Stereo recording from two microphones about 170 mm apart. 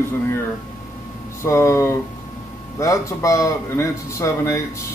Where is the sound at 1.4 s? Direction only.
15° left (ahead or behind).